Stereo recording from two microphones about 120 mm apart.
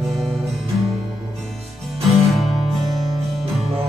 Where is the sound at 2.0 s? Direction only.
Centre (ahead or behind).